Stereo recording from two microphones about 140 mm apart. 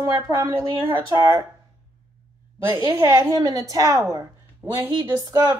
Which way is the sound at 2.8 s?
25° right (ahead or behind).